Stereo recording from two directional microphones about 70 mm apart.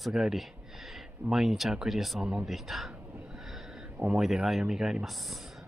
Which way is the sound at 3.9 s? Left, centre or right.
Centre.